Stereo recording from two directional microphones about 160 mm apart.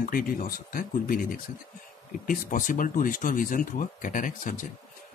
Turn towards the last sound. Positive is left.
turn(degrees=55)  # may be behind; listen again after turning